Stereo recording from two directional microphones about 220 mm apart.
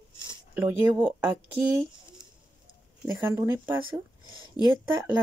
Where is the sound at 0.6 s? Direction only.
20° right (ahead or behind).